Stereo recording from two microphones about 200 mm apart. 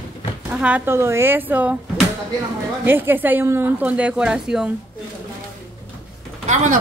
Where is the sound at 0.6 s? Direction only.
5° right (ahead or behind).